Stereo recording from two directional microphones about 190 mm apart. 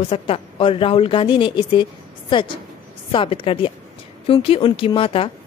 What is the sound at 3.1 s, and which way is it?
Speech, 30° left (ahead or behind).